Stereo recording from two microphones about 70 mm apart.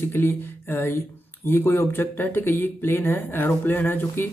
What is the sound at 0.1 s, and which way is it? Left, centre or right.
Speech, left.